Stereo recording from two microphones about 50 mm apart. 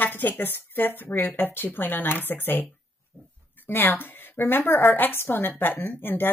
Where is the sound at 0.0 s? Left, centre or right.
Left.